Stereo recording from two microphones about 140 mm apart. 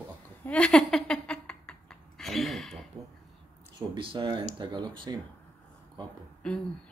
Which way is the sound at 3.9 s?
35° right (ahead or behind).